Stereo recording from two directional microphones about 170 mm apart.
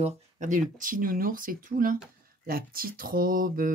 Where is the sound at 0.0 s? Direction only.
50° right (ahead or behind).